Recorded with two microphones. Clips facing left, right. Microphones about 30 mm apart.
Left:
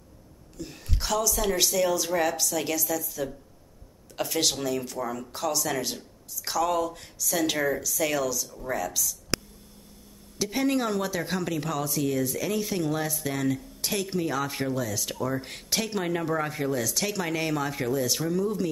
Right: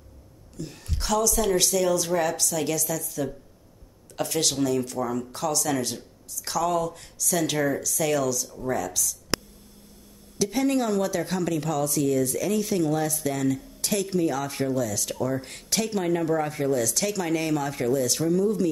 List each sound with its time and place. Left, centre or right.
0.6 s speech: centre
9.3 s a sound: centre
10.4 s speech: centre